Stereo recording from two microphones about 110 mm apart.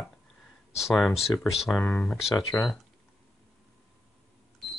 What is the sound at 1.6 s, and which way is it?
Speech, centre (ahead or behind).